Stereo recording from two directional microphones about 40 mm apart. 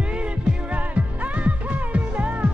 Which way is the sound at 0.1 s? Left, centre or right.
Right.